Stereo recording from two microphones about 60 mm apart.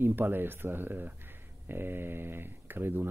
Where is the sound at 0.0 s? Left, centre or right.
Right.